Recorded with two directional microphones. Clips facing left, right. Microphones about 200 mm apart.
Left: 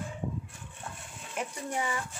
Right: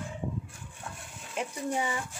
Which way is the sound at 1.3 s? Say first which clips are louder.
Right 3 dB; 15° right (ahead or behind).